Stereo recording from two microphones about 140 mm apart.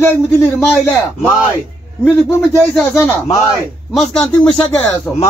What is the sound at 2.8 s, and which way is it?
Speech, 15° left (ahead or behind).